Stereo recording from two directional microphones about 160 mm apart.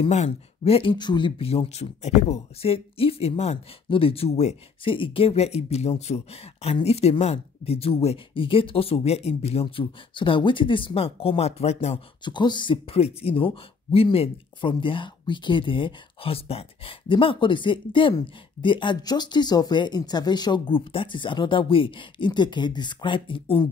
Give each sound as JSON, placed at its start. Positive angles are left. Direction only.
{"t": 0.0, "sound": "speech", "side_deg": 40}
{"t": 12.3, "sound": "speech", "side_deg": 30}